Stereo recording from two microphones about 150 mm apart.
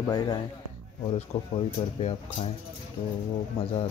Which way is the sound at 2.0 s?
45° left (ahead or behind).